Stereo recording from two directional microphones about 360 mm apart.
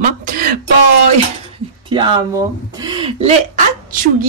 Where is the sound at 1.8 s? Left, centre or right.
Centre.